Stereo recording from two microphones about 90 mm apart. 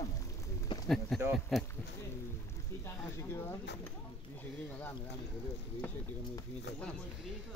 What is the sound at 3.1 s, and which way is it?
Speech, 30° left (ahead or behind).